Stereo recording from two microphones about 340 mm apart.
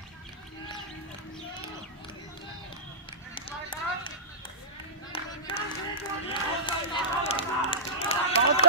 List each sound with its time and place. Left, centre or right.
3.3 s a sound: centre
5.1 s clapping: centre
6.2 s run: centre